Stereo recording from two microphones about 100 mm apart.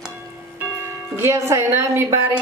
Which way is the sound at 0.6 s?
25° right (ahead or behind).